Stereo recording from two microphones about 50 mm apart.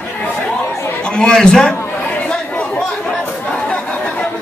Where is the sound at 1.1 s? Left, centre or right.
Centre.